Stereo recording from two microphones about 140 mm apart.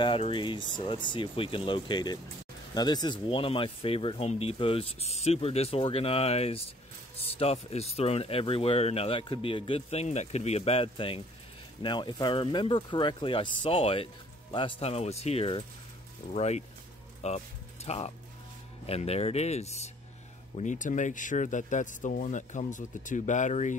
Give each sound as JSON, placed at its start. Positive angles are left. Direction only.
{"t": 0.0, "sound": "speech", "side_deg": 40}
{"t": 20.5, "sound": "speech", "side_deg": 60}